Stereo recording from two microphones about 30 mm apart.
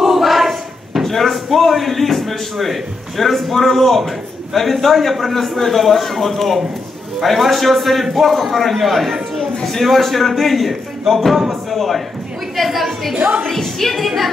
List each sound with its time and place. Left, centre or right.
0.0 s a sound: centre
1.0 s a man's voice: centre
9.5 s a sound: centre
9.8 s a man's voice: centre
10.7 s speech: centre
11.7 s a man's voice: centre
13.1 s a woman's voice: right
13.5 s a woman's voice: centre
14.0 s a man's voice: centre